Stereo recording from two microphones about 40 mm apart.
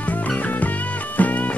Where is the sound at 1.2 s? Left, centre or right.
Left.